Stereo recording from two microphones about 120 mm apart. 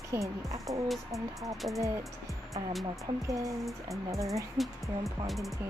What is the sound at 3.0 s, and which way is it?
Speech, 25° right (ahead or behind).